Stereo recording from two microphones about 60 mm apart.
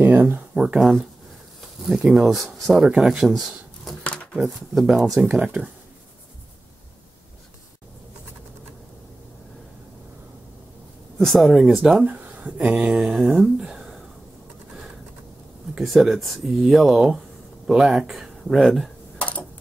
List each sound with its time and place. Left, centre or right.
0.0 s a sound: right
0.6 s speech: centre
2.9 s speech: centre
3.2 s speech: centre
4.0 s a sound: centre
4.4 s speech: centre
5.4 s speech: right
11.1 s speech: centre
12.0 s speech: right; by 13.8 s centre
15.8 s speech: centre
19.1 s a sound: left